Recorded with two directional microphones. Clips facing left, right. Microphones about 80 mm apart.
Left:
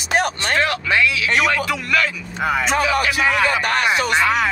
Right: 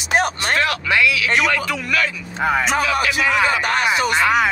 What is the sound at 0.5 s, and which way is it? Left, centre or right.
Speech, left.